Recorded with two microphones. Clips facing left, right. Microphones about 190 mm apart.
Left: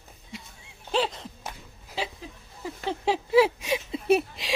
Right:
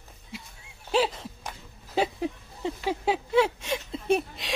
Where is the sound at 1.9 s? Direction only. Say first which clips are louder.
Right 8 dB; 50° right (ahead or behind).